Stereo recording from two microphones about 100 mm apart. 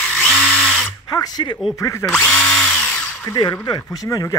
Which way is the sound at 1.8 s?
30° left (ahead or behind).